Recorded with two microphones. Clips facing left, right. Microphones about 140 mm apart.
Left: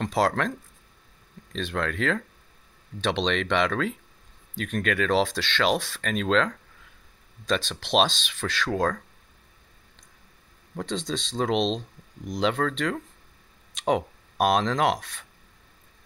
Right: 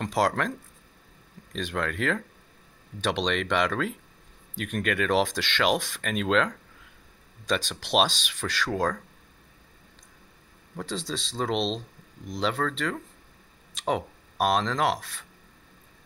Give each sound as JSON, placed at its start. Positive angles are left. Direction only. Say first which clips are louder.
{"t": 0.0, "sound": "speech", "louder": "left 1 dB", "side_deg": -10}
{"t": 1.5, "sound": "speech", "louder": "left 1 dB", "side_deg": -10}
{"t": 10.8, "sound": "speech", "louder": "left 3 dB", "side_deg": -5}